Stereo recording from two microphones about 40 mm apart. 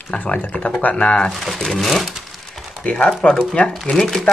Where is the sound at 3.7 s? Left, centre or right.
Centre.